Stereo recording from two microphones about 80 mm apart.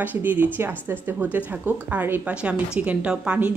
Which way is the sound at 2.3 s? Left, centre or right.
Centre.